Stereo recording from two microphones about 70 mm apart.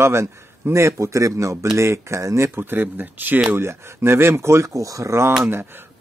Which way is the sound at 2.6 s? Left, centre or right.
Right.